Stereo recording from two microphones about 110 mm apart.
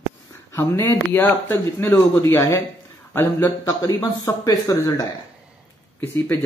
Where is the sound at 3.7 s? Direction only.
30° left (ahead or behind).